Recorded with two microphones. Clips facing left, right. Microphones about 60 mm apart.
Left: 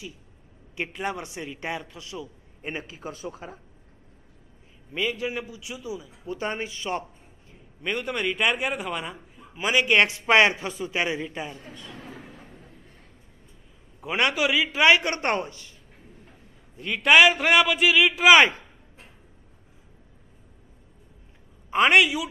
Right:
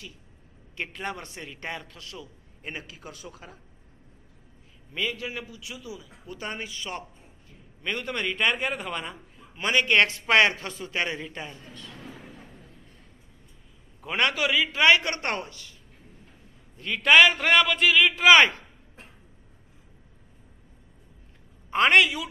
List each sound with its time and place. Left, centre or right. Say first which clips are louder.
0.7 s a man's voice: left 3 dB; centre
2.7 s a man's voice: left 5 dB; left
4.9 s a man's voice: left 3 dB; left
7.8 s a man's voice: left 2 dB; centre
11.5 s a man's voice: left 3 dB; centre
12.3 s a sound: left 1 dB; centre
14.0 s a man's voice: left 2 dB; centre; by 15.7 s left
16.7 s a man's voice: left 1 dB; centre
21.6 s a man's voice: left 1 dB; centre